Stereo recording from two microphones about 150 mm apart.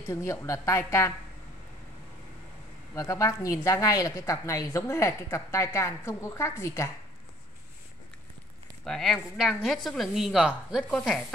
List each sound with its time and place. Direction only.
0.1 s a woman's voice: 20° left (ahead or behind)
2.9 s a woman's voice: 20° left (ahead or behind)
8.8 s a woman's voice: centre (ahead or behind)